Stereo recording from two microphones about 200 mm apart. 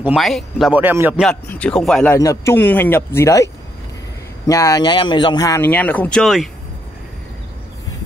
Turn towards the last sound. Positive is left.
turn(degrees=0)  # may be behind; listen again after turning